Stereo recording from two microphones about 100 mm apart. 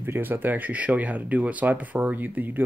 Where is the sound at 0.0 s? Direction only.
20° right (ahead or behind).